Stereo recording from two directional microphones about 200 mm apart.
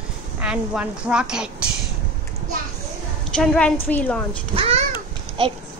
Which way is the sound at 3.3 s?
5° left (ahead or behind).